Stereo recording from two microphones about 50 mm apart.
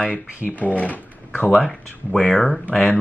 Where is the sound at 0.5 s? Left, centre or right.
Left.